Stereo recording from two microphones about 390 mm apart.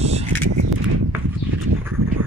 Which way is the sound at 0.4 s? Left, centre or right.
Right.